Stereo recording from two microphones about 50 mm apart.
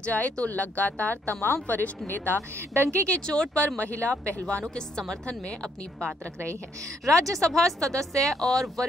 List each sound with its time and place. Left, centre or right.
0.0 s speech: left
2.7 s speech: right
3.1 s a woman's voice: centre
7.2 s speech: right
7.4 s speech: centre